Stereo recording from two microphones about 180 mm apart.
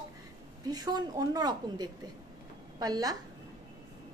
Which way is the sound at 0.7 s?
20° right (ahead or behind).